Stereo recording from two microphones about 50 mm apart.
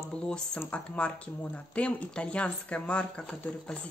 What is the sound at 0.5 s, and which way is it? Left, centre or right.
Speech, left.